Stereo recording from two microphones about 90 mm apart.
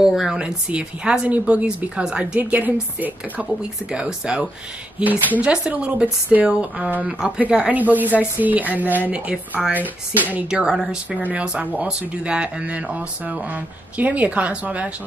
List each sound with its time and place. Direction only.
0.0 s speech: 5° right (ahead or behind)
10.5 s speech: 5° right (ahead or behind)